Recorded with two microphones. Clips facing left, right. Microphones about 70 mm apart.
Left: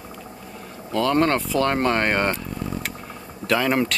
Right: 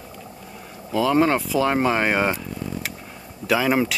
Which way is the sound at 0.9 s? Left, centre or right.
Centre.